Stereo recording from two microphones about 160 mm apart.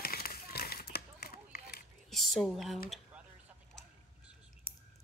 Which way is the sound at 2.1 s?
Centre (ahead or behind).